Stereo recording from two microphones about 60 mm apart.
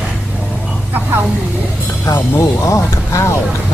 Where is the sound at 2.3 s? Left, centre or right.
Left.